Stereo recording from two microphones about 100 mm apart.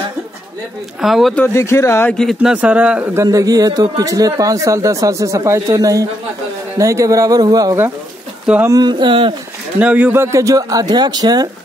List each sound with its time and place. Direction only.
1.0 s speech: centre (ahead or behind)
1.5 s speech: 30° left (ahead or behind)
2.0 s speech: 5° left (ahead or behind)
2.4 s speech: 10° right (ahead or behind)
3.2 s speech: 35° right (ahead or behind)
8.7 s speech: 45° right (ahead or behind)
9.8 s speech: 15° right (ahead or behind); by 11.4 s 45° right (ahead or behind)